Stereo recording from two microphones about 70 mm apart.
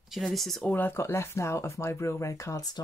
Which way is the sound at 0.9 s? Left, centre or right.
Left.